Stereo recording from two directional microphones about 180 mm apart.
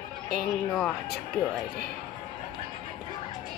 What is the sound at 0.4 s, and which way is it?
Speech, 5° left (ahead or behind).